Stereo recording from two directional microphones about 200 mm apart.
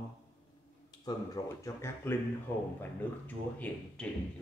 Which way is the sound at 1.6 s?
10° left (ahead or behind).